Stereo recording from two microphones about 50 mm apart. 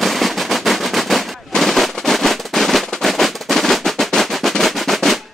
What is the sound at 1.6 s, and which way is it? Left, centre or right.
Firecracker, centre.